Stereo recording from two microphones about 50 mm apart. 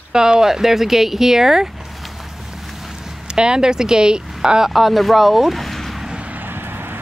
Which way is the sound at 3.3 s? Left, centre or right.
Centre.